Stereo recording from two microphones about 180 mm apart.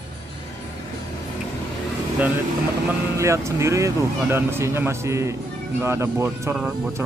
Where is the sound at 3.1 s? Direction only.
15° right (ahead or behind).